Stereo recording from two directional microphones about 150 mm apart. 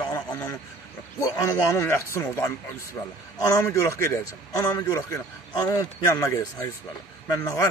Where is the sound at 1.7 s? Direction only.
20° left (ahead or behind).